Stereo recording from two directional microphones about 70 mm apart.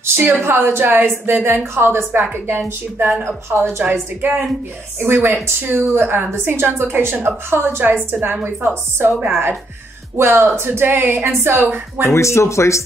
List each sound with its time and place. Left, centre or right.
0.0 s a woman's voice: right
12.1 s speech: left